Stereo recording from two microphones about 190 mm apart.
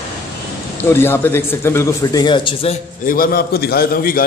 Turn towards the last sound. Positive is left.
turn(degrees=50)  # may be behind; listen again after turning